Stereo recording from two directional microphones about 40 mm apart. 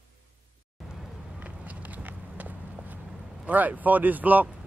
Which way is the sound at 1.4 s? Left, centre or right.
Right.